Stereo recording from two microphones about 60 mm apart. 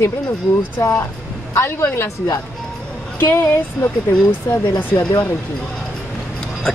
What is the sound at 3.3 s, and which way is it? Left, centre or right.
Speech, left.